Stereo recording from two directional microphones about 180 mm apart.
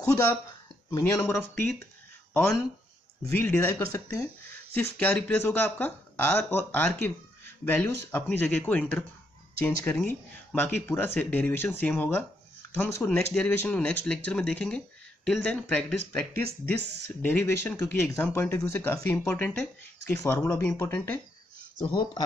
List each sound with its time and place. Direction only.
0.0 s speech: 20° left (ahead or behind)
3.3 s speech: 15° left (ahead or behind)